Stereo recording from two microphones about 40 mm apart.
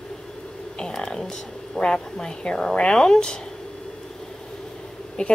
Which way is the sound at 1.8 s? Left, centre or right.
Centre.